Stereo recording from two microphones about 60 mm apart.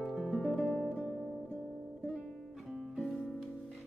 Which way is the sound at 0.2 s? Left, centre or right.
Centre.